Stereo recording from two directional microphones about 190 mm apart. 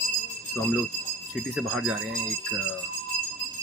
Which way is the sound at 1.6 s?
Centre (ahead or behind).